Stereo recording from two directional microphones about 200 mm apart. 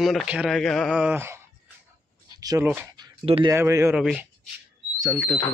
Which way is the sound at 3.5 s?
15° right (ahead or behind).